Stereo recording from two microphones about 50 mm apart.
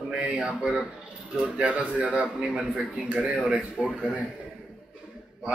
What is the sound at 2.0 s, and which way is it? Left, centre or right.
Speech, right.